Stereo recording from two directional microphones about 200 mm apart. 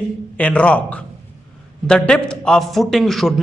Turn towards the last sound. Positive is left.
turn(degrees=0)  # may be behind; listen again after turning